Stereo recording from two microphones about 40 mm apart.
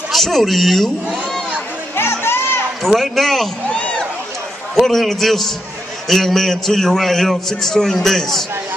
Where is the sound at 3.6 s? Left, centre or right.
Left.